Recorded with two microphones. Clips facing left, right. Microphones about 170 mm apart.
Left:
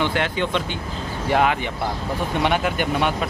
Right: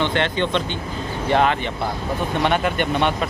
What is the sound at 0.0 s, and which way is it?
Speech, 10° left (ahead or behind).